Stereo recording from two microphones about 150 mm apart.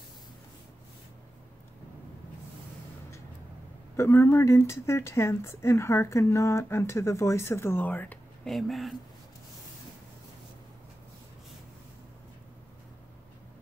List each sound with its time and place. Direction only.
3.9 s speech: 20° left (ahead or behind)
8.5 s speech: centre (ahead or behind)